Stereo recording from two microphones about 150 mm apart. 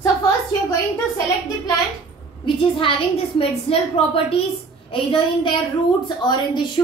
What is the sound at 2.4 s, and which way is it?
A woman's voice, 35° left (ahead or behind).